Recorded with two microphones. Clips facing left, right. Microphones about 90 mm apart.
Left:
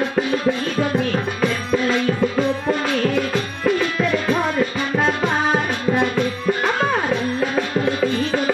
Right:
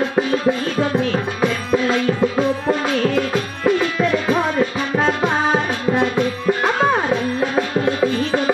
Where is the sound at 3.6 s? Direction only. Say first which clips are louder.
Right 2 dB; 10° right (ahead or behind).